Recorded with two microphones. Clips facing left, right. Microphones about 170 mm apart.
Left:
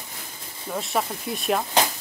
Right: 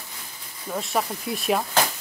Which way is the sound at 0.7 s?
Centre (ahead or behind).